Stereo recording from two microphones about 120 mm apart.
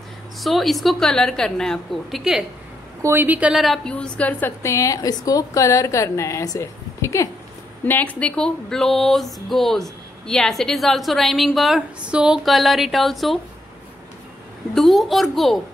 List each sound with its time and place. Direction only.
0.4 s speech: centre (ahead or behind)
3.0 s a woman's voice: 20° right (ahead or behind); by 7.2 s 25° left (ahead or behind)
7.8 s speech: 15° left (ahead or behind)
14.7 s speech: centre (ahead or behind)